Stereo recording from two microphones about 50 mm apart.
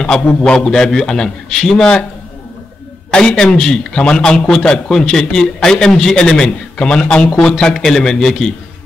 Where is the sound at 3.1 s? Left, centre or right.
Centre.